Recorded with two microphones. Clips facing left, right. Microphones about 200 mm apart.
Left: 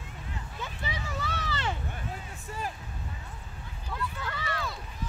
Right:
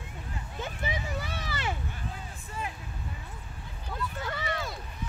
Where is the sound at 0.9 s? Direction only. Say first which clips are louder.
Right 1 dB; 15° right (ahead or behind).